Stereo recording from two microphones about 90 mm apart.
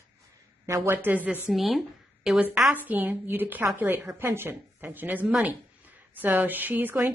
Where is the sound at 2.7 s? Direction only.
20° right (ahead or behind).